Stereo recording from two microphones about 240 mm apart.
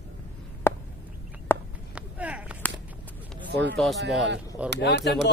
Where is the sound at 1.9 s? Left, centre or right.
Centre.